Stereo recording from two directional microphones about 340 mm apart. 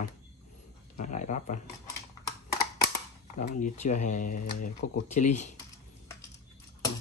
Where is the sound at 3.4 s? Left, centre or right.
Left.